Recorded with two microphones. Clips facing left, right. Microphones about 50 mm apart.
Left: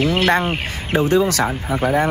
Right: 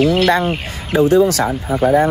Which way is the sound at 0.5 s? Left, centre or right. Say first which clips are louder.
Right 3 dB; left.